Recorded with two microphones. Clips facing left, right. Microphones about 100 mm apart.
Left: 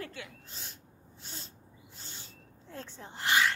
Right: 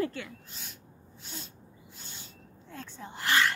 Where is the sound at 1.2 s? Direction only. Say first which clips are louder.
Right 3 dB; 35° left (ahead or behind).